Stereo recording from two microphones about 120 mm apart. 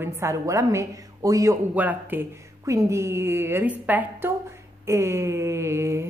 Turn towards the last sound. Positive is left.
turn(degrees=-25)  # may be behind; listen again after turning